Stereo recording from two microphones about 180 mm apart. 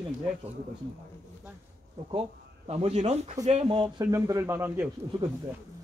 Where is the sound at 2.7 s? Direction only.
35° right (ahead or behind); by 4.9 s 10° right (ahead or behind).